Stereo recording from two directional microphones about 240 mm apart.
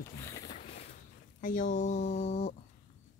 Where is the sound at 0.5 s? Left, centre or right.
Left.